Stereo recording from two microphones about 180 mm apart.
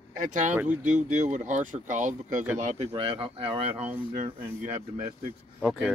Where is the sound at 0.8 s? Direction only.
40° right (ahead or behind).